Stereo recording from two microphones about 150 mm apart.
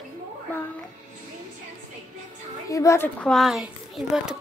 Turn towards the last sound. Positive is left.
turn(degrees=-5)  # may be behind; listen again after turning